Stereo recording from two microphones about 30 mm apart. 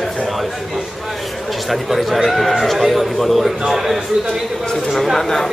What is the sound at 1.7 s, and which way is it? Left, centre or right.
A man's voice, centre.